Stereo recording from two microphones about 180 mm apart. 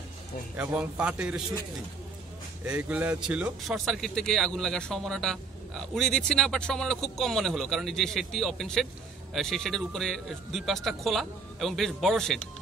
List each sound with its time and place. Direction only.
0.6 s a man's voice: 5° right (ahead or behind)
2.6 s a man's voice: 5° right (ahead or behind)